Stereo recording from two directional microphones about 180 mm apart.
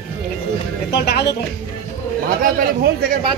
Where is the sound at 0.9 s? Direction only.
65° left (ahead or behind).